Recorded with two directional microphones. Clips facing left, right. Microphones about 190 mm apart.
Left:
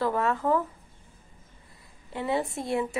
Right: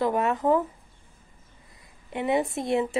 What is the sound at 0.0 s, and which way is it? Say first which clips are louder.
Speech: right 2 dB; 20° right (ahead or behind).